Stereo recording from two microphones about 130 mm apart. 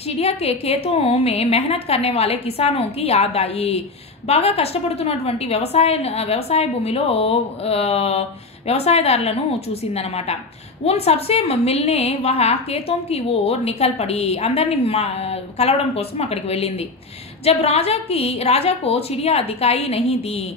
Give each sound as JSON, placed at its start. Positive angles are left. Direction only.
{"t": 0.1, "sound": "a woman's voice", "side_deg": 50}